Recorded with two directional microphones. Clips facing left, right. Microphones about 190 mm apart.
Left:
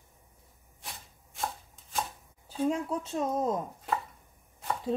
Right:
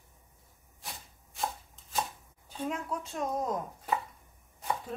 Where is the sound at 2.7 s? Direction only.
30° left (ahead or behind).